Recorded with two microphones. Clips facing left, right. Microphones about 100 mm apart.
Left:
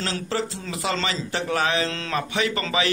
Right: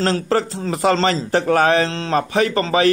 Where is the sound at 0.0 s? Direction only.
45° right (ahead or behind).